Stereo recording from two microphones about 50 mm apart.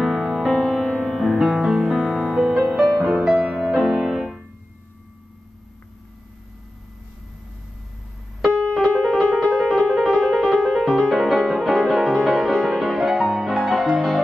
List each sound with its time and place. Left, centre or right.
0.0 s music: centre
1.5 s music: centre
9.0 s music: centre